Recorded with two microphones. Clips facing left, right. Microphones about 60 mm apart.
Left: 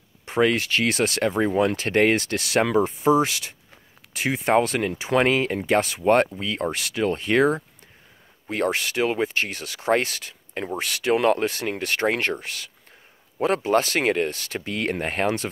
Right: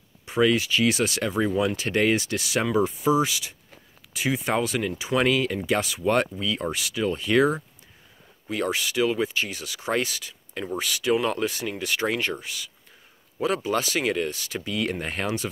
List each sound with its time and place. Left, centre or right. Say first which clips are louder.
0.2 s speech: left 1 dB; left